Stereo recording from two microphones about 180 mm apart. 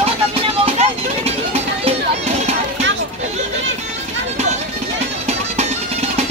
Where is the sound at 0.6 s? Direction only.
35° right (ahead or behind).